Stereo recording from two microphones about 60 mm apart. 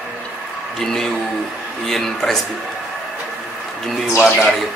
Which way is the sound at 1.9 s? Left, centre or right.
Centre.